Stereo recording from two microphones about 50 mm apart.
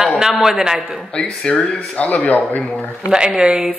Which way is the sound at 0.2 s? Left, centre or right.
Centre.